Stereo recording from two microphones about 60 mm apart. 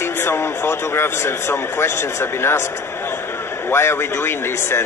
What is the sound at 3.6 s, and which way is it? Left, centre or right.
A man's voice, left.